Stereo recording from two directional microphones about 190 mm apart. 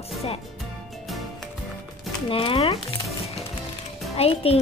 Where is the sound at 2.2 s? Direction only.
30° left (ahead or behind).